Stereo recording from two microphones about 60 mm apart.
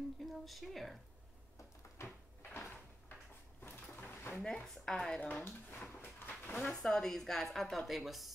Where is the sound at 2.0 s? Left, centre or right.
Left.